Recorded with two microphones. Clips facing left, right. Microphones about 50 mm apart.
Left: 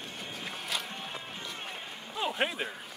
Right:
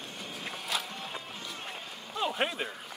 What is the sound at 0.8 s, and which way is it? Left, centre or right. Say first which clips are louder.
Music: even; left.